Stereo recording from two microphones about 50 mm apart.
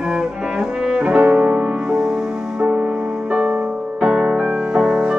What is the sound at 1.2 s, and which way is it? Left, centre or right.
Music, right.